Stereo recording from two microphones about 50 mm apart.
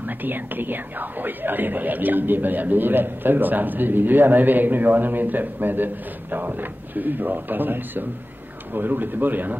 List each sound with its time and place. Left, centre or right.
0.2 s a man's voice: right